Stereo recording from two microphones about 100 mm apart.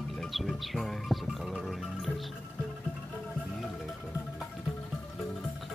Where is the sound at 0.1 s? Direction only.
Centre (ahead or behind).